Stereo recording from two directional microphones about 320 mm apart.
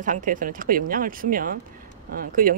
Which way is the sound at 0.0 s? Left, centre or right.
Right.